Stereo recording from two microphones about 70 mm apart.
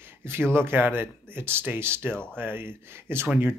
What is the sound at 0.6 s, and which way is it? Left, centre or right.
Speech, right.